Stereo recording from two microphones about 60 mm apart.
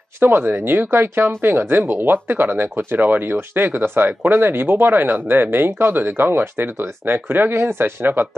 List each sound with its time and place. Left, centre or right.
0.2 s speech: right